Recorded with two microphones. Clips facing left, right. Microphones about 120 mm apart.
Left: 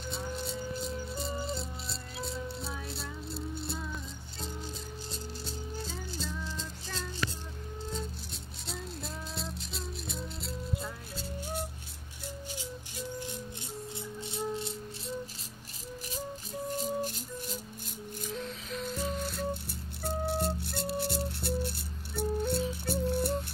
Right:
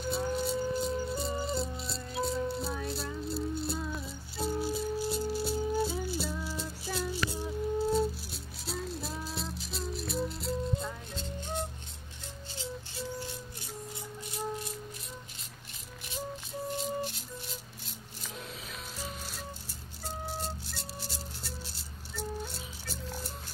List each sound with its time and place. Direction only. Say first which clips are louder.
0.0 s rattle: right 6 dB; 5° right (ahead or behind)
14.2 s rattle: left 2 dB; 25° left (ahead or behind)
16.7 s rattle: left 2 dB; 45° left (ahead or behind)
18.4 s music: left 6 dB; 5° right (ahead or behind)
18.9 s rattle: left 7 dB; 60° left (ahead or behind)